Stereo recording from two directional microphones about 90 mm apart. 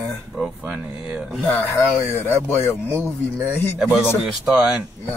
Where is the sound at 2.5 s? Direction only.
30° left (ahead or behind).